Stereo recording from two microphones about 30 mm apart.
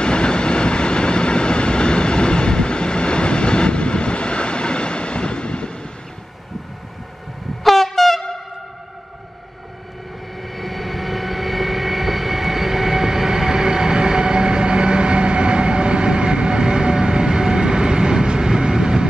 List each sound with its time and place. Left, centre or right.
0.0 s train: left
7.6 s train: centre
10.4 s vehicle: centre; by 19.0 s right